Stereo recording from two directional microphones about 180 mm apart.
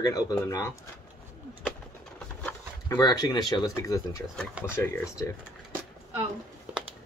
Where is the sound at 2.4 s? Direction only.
10° left (ahead or behind).